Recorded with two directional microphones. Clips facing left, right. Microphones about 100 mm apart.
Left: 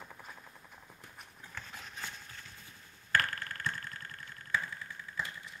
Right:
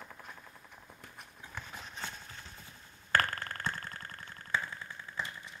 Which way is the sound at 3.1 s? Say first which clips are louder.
Right 2 dB; 35° right (ahead or behind).